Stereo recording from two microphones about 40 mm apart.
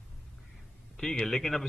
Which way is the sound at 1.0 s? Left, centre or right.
Centre.